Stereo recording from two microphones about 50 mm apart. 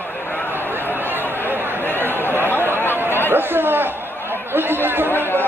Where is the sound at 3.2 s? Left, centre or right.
Right.